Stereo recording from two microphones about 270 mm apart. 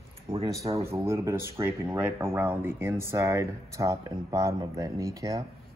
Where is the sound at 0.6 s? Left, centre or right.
Centre.